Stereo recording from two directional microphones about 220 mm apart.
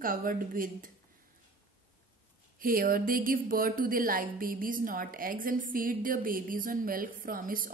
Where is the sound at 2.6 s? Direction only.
40° right (ahead or behind).